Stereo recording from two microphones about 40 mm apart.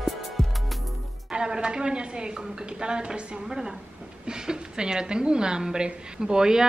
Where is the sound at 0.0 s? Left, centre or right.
Centre.